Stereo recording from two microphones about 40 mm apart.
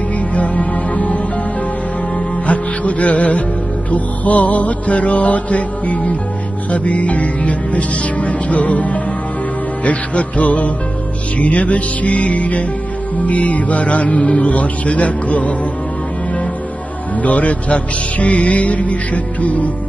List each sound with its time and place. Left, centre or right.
0.3 s music: left
14.1 s speech: centre
14.4 s music: left
17.2 s music: left